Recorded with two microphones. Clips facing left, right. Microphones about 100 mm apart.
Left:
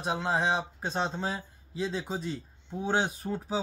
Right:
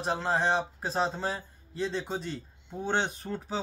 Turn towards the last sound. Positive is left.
turn(degrees=5)  # may be behind; listen again after turning